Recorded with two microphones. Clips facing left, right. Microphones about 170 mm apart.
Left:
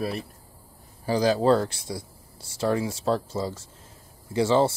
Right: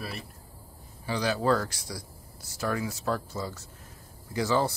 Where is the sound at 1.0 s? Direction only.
35° left (ahead or behind).